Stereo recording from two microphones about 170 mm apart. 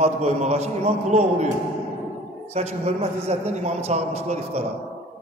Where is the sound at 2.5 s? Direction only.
35° right (ahead or behind).